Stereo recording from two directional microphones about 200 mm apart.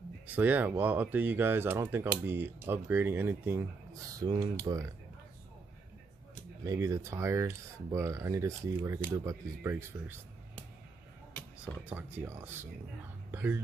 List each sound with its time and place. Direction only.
0.3 s speech: 10° right (ahead or behind)
6.3 s speech: 15° right (ahead or behind)
11.8 s speech: 10° right (ahead or behind)